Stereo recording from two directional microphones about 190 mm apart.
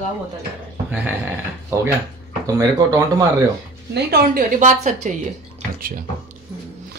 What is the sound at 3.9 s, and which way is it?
A woman's voice, 50° right (ahead or behind).